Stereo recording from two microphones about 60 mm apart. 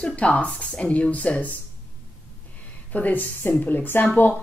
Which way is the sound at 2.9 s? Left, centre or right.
Left.